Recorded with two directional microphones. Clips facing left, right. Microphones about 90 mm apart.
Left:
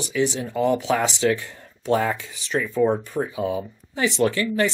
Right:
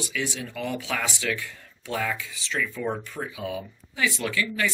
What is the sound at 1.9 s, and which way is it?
Speech, 40° left (ahead or behind).